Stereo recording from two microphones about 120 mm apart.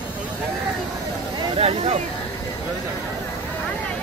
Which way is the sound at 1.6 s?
65° right (ahead or behind).